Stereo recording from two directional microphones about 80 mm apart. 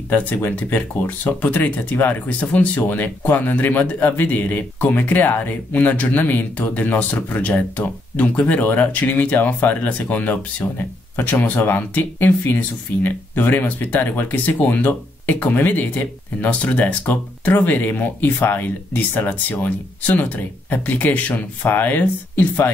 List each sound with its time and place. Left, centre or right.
0.1 s speech: left